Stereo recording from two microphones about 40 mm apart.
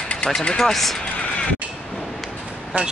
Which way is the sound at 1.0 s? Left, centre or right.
Left.